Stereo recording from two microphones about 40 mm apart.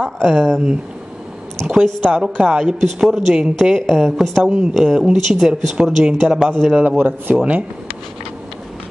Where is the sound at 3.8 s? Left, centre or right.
Centre.